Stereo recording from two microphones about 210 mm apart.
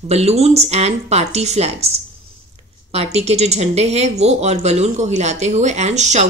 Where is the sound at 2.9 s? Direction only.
30° right (ahead or behind).